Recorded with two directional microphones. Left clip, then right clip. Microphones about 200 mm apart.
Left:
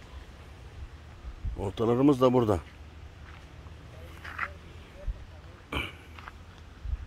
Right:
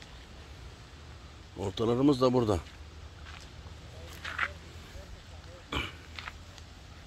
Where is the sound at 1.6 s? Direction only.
5° left (ahead or behind).